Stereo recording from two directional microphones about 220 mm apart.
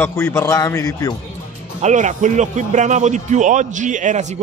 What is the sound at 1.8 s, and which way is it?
A man's voice, 35° right (ahead or behind).